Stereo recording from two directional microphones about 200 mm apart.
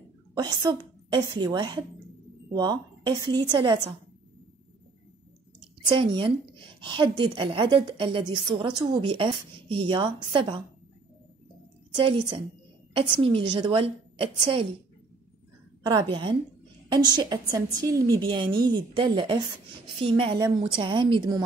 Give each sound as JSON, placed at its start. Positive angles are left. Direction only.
{"t": 0.4, "sound": "a woman's voice", "side_deg": -20}
{"t": 5.9, "sound": "a woman's voice", "side_deg": -25}
{"t": 12.0, "sound": "a woman's voice", "side_deg": -25}
{"t": 15.8, "sound": "a woman's voice", "side_deg": -20}